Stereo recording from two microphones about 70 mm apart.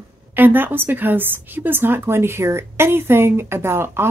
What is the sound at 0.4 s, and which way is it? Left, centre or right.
Speech, right.